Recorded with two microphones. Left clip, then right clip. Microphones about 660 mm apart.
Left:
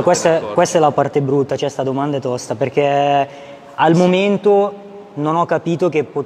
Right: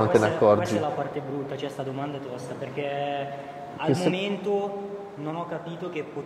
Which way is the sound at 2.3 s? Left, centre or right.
Left.